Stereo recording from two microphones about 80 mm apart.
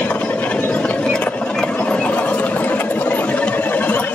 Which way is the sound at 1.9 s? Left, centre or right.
Centre.